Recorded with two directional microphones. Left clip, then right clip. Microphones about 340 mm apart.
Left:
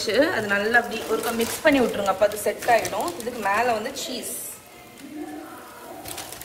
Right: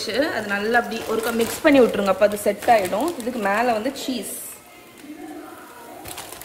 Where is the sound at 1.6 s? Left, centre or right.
Right.